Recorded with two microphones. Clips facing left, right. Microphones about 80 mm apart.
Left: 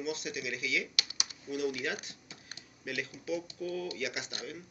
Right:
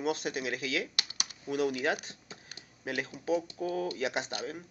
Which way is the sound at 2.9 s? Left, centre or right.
Right.